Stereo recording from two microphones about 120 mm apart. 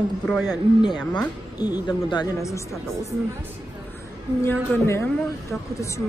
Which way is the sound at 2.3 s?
25° left (ahead or behind).